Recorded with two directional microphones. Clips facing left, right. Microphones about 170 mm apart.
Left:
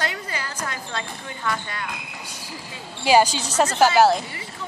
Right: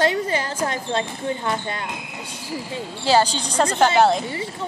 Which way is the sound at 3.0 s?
10° left (ahead or behind).